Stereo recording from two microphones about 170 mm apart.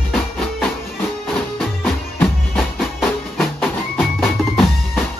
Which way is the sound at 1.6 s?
Centre (ahead or behind).